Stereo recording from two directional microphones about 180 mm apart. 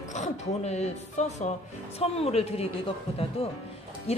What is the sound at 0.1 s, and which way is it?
A woman's voice, 40° left (ahead or behind).